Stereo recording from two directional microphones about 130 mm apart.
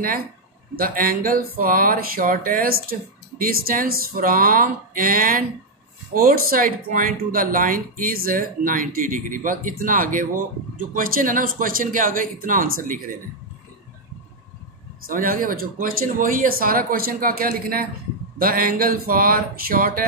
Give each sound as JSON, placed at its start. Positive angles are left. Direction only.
{"t": 0.7, "sound": "speech", "side_deg": -90}
{"t": 15.0, "sound": "speech", "side_deg": -90}